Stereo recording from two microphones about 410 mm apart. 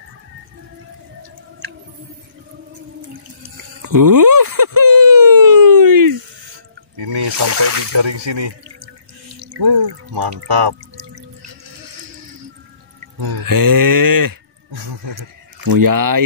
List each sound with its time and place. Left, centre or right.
3.8 s a sound: right
7.1 s speech: right
7.9 s speech: right
9.4 s speech: right
13.2 s speech: right